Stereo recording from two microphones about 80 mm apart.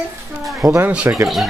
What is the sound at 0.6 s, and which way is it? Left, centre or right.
Speech, centre.